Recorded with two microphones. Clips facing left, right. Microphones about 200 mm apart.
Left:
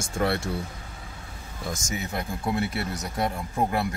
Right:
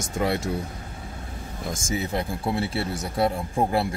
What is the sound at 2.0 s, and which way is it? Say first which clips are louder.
Speech: right 1 dB; 30° right (ahead or behind).